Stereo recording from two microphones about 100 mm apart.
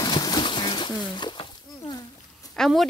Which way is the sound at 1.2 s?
50° left (ahead or behind).